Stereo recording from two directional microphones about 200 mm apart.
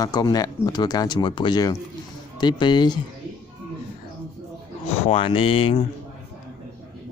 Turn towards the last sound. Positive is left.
turn(degrees=25)  # may be behind; listen again after turning